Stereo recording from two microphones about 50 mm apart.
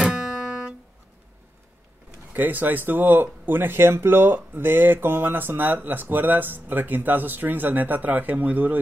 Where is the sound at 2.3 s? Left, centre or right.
Right.